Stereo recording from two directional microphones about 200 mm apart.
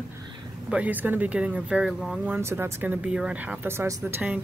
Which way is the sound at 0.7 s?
10° right (ahead or behind).